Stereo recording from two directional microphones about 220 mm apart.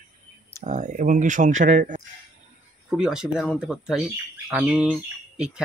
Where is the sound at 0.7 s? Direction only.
35° right (ahead or behind).